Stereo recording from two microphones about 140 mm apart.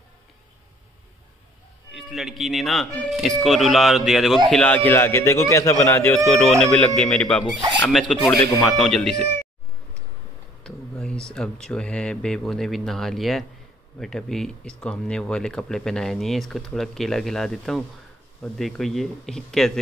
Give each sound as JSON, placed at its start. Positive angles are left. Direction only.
{"t": 1.9, "sound": "a man's voice", "side_deg": 0}
{"t": 6.6, "sound": "a man's voice", "side_deg": 5}
{"t": 10.6, "sound": "speech", "side_deg": 5}